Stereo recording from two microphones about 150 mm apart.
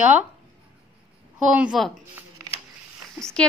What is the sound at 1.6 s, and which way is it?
Speech, centre (ahead or behind).